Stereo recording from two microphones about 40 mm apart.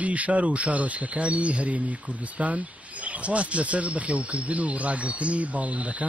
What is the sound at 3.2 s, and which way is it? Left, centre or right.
Speech, right.